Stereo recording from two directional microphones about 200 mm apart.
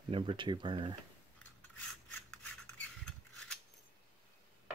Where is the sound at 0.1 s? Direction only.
25° right (ahead or behind).